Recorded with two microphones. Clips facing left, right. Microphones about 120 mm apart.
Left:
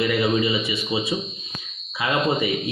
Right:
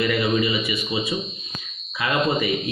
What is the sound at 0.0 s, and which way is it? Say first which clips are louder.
A man's voice: even; 20° left (ahead or behind).